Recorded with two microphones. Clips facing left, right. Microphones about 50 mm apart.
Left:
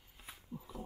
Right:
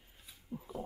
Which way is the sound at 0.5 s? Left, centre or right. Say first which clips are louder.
Right 4 dB; right.